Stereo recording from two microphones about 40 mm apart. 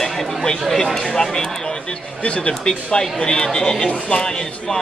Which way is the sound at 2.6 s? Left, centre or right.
Centre.